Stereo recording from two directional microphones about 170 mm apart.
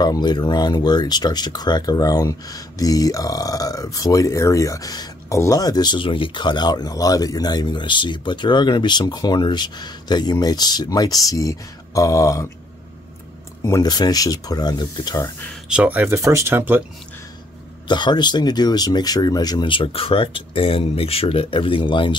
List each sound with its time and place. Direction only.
0.0 s speech: 25° left (ahead or behind)
13.7 s speech: 20° left (ahead or behind)
15.7 s speech: 10° right (ahead or behind)
17.8 s speech: 25° left (ahead or behind)